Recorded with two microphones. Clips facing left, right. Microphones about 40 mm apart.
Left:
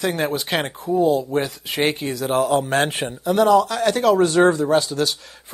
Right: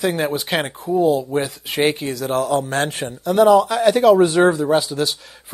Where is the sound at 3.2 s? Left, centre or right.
Centre.